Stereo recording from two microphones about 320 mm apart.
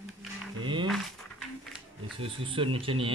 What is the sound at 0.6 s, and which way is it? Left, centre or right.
Speech, centre.